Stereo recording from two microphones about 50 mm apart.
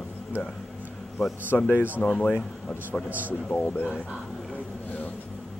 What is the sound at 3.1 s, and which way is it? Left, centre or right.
Speech, right.